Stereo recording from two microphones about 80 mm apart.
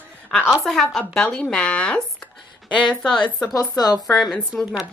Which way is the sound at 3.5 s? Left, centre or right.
Left.